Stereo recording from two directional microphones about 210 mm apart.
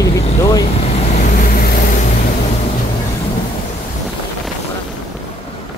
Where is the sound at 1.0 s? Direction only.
35° left (ahead or behind).